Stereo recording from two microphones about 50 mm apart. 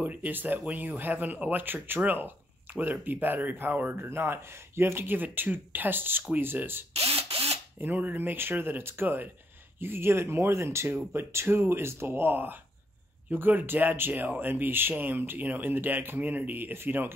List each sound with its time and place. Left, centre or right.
0.0 s speech: right
11.1 s speech: right